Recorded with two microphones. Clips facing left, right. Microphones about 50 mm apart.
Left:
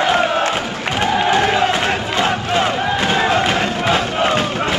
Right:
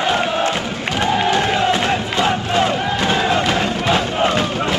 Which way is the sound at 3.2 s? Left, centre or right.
Left.